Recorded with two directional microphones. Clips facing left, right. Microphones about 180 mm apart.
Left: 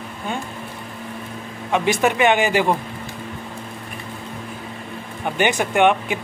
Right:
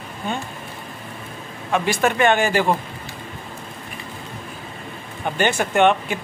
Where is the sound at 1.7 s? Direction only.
15° left (ahead or behind).